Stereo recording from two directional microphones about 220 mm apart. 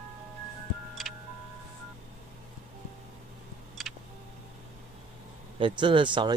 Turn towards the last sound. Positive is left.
turn(degrees=-20)  # may be behind; listen again after turning